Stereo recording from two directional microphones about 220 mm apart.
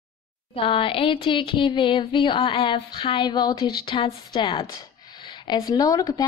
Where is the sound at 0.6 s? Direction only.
25° left (ahead or behind).